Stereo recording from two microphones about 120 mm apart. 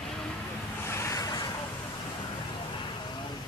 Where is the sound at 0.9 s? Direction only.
25° left (ahead or behind).